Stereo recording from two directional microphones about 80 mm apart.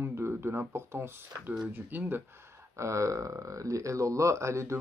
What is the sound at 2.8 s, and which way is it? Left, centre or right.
Speech, right.